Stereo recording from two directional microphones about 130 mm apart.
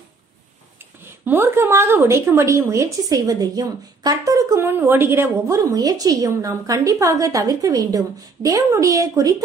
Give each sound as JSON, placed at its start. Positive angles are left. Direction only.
{"t": 1.2, "sound": "a woman's voice", "side_deg": -15}